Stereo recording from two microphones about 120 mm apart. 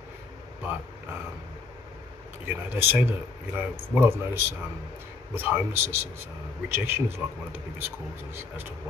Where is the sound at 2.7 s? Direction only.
15° right (ahead or behind).